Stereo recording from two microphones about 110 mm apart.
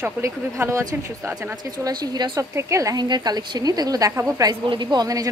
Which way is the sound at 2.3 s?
25° right (ahead or behind).